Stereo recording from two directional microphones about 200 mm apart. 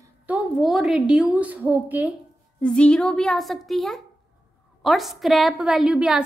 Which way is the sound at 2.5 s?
5° left (ahead or behind).